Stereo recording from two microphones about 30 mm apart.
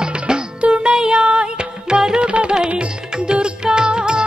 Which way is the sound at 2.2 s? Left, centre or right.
Right.